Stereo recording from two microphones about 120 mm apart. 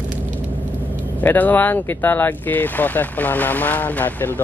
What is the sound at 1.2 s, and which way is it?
Speech, 15° left (ahead or behind).